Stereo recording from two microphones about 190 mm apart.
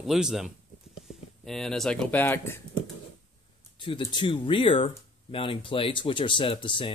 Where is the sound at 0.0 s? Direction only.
5° right (ahead or behind).